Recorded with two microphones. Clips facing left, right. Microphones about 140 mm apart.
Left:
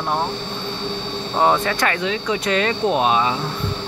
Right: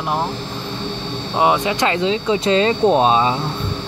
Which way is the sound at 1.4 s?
15° right (ahead or behind).